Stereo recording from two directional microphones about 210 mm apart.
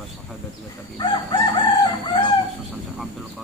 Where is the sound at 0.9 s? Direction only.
20° left (ahead or behind).